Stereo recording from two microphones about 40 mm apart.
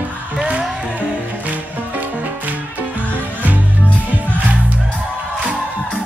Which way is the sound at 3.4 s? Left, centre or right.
Right.